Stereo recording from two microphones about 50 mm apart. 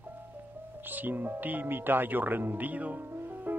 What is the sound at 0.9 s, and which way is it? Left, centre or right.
Speech, right.